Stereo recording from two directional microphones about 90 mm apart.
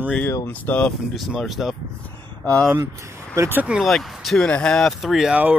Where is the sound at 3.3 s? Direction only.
30° right (ahead or behind).